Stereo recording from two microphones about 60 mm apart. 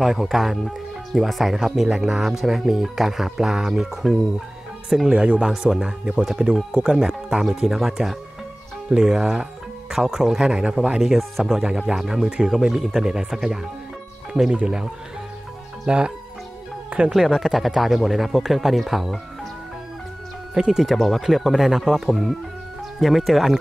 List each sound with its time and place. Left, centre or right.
0.0 s speech: centre
17.1 s speech: centre
20.5 s speech: centre